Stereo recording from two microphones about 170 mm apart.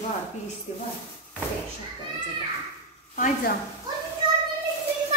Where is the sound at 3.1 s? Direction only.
50° left (ahead or behind).